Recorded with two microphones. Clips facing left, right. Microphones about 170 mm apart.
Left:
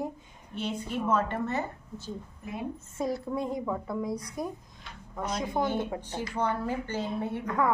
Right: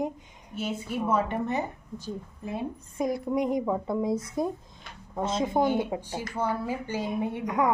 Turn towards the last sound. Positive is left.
turn(degrees=-15)  # may be behind; listen again after turning